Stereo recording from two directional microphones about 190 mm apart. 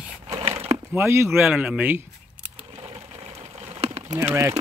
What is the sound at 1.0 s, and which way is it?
Speech, 15° right (ahead or behind).